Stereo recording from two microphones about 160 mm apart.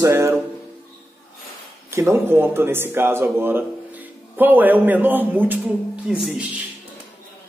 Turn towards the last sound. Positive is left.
turn(degrees=-10)  # may be behind; listen again after turning